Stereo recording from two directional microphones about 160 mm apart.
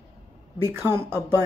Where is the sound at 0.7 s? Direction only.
15° right (ahead or behind).